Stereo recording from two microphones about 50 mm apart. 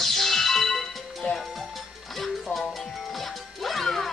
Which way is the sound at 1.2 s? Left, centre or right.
Left.